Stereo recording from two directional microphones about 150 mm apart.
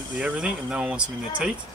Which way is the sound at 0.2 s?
5° right (ahead or behind).